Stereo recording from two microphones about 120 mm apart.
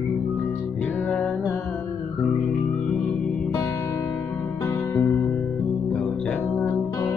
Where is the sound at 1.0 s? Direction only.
10° left (ahead or behind).